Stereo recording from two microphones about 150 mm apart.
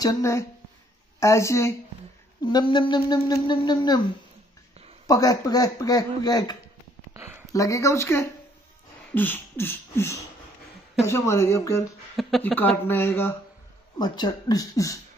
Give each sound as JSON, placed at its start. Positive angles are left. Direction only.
{"t": 0.0, "sound": "speech", "side_deg": 20}
{"t": 2.4, "sound": "speech", "side_deg": 30}
{"t": 5.0, "sound": "speech", "side_deg": 25}
{"t": 7.2, "sound": "a sound", "side_deg": -15}
{"t": 7.5, "sound": "speech", "side_deg": 20}
{"t": 9.1, "sound": "a sound", "side_deg": 15}
{"t": 11.1, "sound": "speech", "side_deg": 20}
{"t": 12.2, "sound": "a sound", "side_deg": 0}
{"t": 13.9, "sound": "speech", "side_deg": 30}